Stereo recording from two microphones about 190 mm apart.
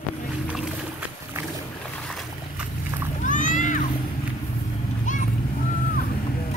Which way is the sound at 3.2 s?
45° left (ahead or behind).